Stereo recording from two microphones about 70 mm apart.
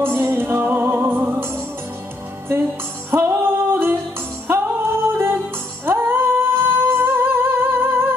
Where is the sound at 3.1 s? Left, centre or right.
Right.